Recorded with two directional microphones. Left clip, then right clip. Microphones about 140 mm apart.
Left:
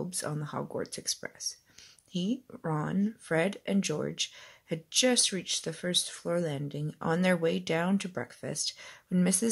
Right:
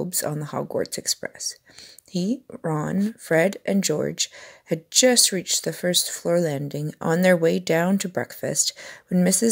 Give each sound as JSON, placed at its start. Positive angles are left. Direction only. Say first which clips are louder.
{"t": 0.0, "sound": "speech", "louder": "right 9 dB", "side_deg": -35}